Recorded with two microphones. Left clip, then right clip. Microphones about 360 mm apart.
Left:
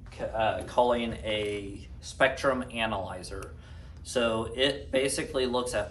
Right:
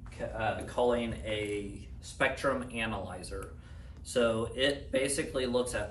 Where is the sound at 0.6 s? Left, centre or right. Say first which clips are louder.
Left 4 dB; centre.